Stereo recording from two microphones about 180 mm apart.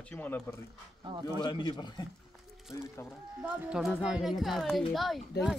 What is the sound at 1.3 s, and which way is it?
Speech, 25° left (ahead or behind).